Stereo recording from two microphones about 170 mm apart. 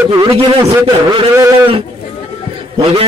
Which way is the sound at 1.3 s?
15° right (ahead or behind).